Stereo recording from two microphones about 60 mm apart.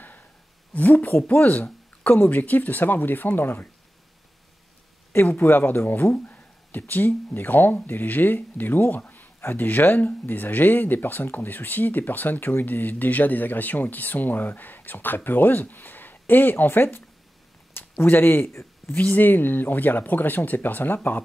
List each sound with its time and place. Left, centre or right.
0.7 s speech: left
5.1 s speech: left
18.9 s speech: left